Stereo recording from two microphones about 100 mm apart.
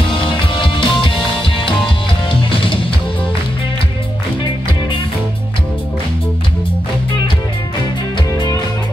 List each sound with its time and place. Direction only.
0.1 s music: 60° left (ahead or behind)